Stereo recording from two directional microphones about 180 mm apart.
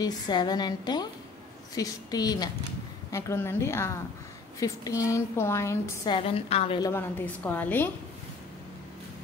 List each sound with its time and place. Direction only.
0.0 s a woman's voice: 25° left (ahead or behind)
6.1 s a woman's voice: 30° left (ahead or behind)
6.8 s a woman's voice: 15° left (ahead or behind)